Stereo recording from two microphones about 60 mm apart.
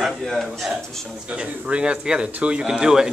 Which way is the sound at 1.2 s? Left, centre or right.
Right.